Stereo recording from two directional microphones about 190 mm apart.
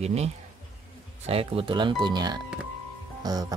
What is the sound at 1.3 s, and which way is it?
Speech, 30° right (ahead or behind).